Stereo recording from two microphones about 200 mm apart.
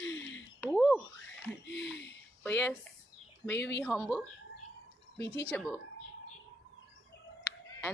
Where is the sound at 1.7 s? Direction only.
60° left (ahead or behind).